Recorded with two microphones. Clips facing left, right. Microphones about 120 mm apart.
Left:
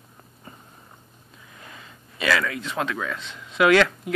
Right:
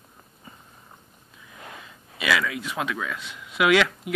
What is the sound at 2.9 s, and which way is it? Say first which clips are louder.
Speech: left 1 dB; 5° right (ahead or behind).